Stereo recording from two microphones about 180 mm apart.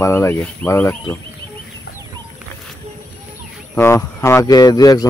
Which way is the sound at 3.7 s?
15° left (ahead or behind).